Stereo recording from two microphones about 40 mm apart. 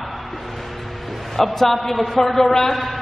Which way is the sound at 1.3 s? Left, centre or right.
Centre.